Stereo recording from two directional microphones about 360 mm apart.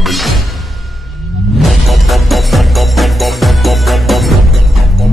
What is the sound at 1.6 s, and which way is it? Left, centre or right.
Music, centre.